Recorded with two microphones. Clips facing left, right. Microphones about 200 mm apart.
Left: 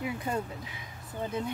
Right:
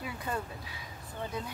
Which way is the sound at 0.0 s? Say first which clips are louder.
Left 4 dB; 20° left (ahead or behind).